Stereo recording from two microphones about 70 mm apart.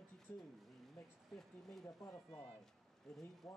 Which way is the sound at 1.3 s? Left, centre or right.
Centre.